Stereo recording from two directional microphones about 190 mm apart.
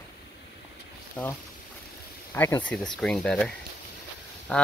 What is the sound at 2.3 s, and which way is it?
Speech, 10° left (ahead or behind).